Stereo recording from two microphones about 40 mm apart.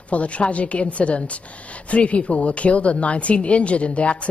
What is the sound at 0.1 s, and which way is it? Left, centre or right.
A woman's voice, left.